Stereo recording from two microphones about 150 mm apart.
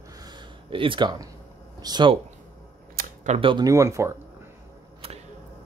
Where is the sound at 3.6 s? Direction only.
20° right (ahead or behind).